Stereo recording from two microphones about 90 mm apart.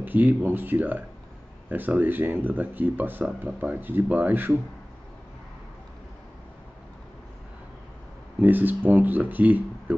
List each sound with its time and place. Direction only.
0.0 s speech: 20° right (ahead or behind)
8.4 s speech: 20° right (ahead or behind)